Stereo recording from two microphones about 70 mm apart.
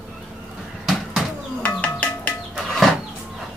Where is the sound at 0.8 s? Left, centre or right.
Centre.